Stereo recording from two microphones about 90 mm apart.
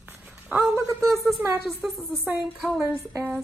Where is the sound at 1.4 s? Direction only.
25° right (ahead or behind).